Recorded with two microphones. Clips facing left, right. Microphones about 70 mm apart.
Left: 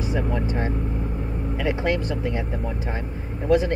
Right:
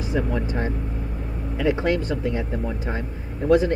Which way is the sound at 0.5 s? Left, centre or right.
Left.